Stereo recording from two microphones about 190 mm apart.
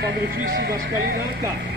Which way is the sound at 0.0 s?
60° right (ahead or behind).